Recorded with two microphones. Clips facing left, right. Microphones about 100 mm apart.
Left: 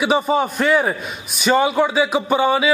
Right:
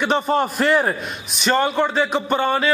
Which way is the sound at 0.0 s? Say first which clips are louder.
Left 1 dB; 5° left (ahead or behind).